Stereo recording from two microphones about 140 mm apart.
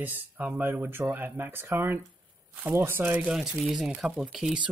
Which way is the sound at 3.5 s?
Centre (ahead or behind).